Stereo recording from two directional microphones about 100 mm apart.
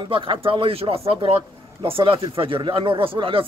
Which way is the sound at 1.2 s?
65° right (ahead or behind).